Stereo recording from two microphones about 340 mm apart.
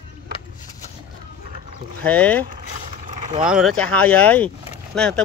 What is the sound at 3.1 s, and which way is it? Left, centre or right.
Vehicle, right.